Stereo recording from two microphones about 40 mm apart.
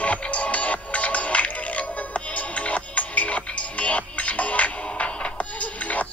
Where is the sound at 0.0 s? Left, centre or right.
Left.